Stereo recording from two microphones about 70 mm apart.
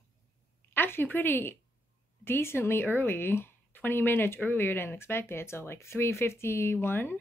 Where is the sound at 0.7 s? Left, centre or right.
Left.